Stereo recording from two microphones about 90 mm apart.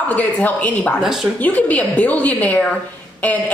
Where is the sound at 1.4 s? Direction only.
15° left (ahead or behind).